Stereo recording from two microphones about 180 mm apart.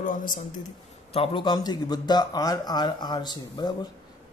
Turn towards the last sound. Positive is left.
turn(degrees=25)  # may be behind; listen again after turning